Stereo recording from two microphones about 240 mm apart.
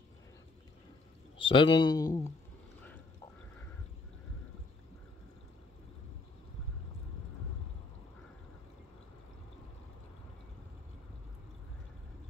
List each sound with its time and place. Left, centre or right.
1.4 s speech: left